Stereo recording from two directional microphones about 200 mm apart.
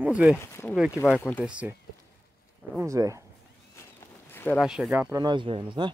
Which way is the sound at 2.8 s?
15° right (ahead or behind).